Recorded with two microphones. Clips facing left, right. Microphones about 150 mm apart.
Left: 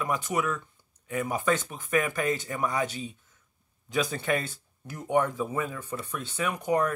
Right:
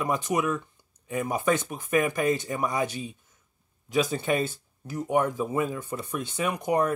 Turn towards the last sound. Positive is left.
turn(degrees=-15)  # may be behind; listen again after turning